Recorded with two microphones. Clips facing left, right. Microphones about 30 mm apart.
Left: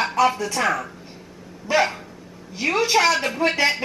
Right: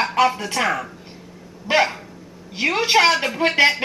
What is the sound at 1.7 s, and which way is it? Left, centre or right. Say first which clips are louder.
Speech: right 2 dB; right.